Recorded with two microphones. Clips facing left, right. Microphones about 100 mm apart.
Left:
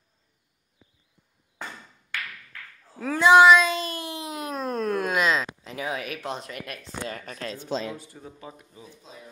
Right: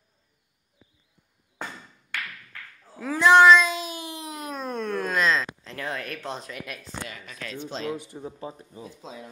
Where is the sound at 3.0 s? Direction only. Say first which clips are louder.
Left 1 dB; centre (ahead or behind).